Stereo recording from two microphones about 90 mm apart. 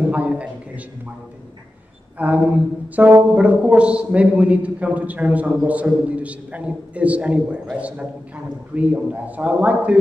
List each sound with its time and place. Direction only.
0.0 s a sound: 15° right (ahead or behind)
2.1 s a man's voice: 15° right (ahead or behind)
8.7 s a man's voice: 15° right (ahead or behind)